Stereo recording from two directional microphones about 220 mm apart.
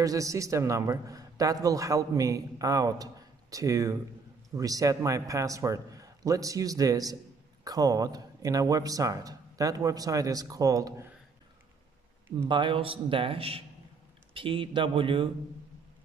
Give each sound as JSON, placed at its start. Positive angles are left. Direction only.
{"t": 0.0, "sound": "a man's voice", "side_deg": -15}
{"t": 12.4, "sound": "a man's voice", "side_deg": -20}